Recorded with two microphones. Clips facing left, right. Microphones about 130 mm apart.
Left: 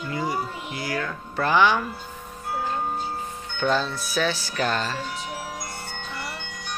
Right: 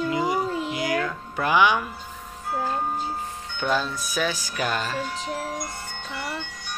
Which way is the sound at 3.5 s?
10° right (ahead or behind).